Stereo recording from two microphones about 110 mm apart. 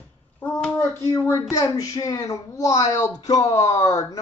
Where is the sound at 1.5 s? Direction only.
30° left (ahead or behind).